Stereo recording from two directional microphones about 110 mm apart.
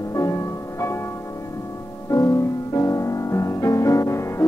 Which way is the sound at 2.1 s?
30° left (ahead or behind).